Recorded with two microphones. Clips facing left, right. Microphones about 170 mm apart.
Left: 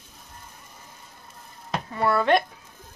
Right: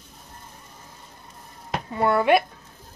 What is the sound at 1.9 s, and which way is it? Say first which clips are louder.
Speech: right 2 dB; 20° right (ahead or behind).